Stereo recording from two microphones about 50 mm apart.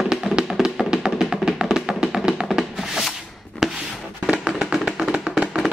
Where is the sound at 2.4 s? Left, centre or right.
Centre.